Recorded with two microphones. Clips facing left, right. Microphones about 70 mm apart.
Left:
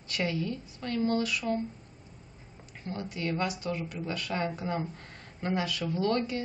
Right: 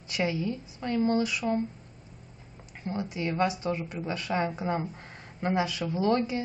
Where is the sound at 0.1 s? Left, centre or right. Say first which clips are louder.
Right 2 dB; centre.